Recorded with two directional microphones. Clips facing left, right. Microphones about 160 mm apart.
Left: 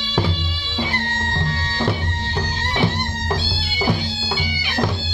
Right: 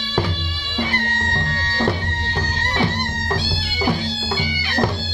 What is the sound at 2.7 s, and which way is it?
Music, 20° left (ahead or behind).